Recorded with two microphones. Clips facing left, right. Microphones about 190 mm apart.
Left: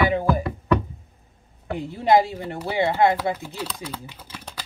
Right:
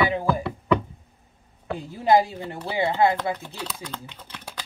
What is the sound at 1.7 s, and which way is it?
Speech, 20° left (ahead or behind).